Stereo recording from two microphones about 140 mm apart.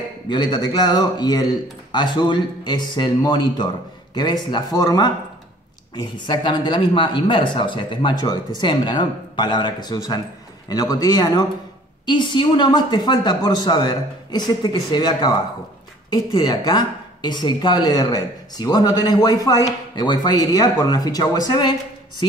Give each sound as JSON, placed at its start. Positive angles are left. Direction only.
{"t": 0.3, "sound": "speech", "side_deg": 30}